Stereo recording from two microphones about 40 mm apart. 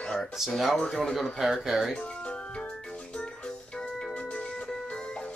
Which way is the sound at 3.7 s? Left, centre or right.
Left.